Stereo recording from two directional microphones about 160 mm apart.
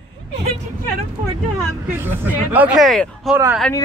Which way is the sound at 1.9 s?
10° right (ahead or behind).